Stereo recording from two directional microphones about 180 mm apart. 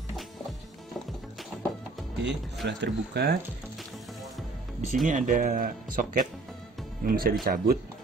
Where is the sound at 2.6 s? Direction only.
70° right (ahead or behind).